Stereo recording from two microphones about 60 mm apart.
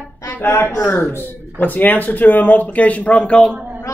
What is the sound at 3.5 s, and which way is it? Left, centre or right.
Speech, right.